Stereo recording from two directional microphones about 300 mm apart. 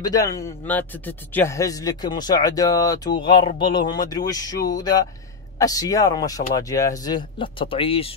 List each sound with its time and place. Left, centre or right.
0.0 s speech: centre